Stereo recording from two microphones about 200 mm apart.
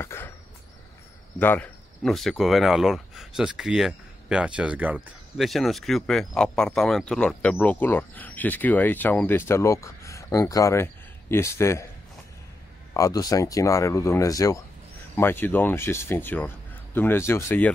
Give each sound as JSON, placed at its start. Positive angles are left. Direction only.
{"t": 0.0, "sound": "a sound", "side_deg": 10}
{"t": 1.4, "sound": "speech", "side_deg": 10}
{"t": 12.9, "sound": "speech", "side_deg": 15}